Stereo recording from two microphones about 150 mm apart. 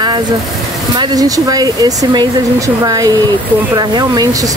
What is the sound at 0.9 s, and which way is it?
Speech, 25° right (ahead or behind).